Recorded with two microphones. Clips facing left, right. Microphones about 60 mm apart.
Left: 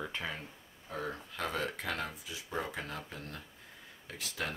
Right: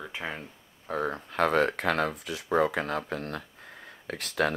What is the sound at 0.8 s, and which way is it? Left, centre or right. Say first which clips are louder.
Speech: right 9 dB; right.